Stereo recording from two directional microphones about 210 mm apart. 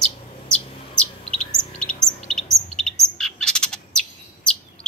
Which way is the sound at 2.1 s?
5° left (ahead or behind).